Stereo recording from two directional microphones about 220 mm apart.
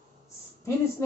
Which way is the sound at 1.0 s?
10° left (ahead or behind).